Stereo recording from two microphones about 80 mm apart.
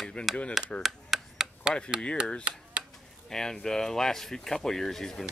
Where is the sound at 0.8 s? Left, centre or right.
Centre.